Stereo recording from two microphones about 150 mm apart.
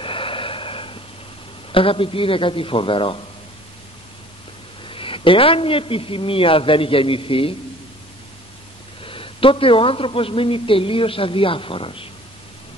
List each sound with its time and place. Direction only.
0.0 s a sound: 35° left (ahead or behind)
1.7 s a man's voice: 35° left (ahead or behind)
4.8 s a man's voice: 35° left (ahead or behind)
9.0 s a man's voice: 35° left (ahead or behind)